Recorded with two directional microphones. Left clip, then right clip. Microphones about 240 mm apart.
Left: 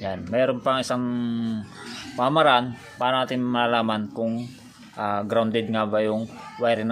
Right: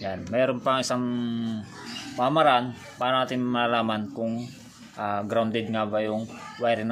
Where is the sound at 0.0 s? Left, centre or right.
Centre.